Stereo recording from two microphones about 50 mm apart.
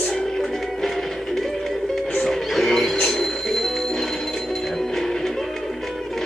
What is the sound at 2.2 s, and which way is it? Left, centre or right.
Music, centre.